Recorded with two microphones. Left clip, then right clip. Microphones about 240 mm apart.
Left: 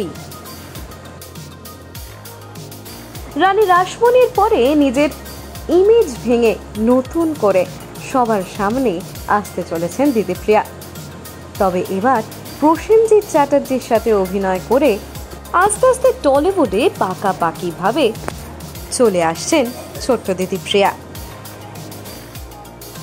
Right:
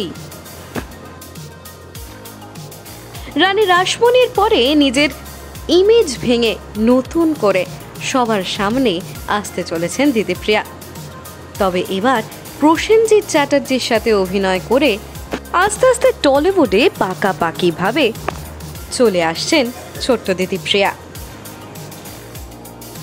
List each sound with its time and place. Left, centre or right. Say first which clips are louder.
3.3 s speech: even; centre
8.2 s speech: left 1 dB; centre
11.5 s speech: even; centre
19.1 s speech: even; centre